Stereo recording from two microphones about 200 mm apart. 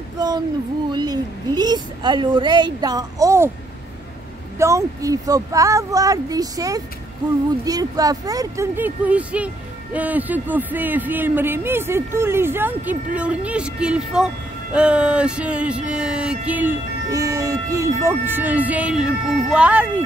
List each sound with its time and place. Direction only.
0.2 s a woman's voice: 20° right (ahead or behind)
4.6 s speech: 15° right (ahead or behind)